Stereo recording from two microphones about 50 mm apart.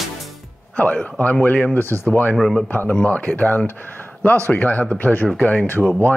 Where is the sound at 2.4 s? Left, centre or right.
Centre.